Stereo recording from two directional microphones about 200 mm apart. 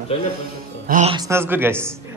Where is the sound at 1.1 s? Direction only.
15° right (ahead or behind).